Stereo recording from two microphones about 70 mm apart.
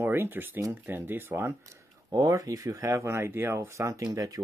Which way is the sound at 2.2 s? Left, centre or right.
Right.